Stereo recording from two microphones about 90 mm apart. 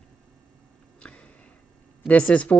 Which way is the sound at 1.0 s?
15° left (ahead or behind).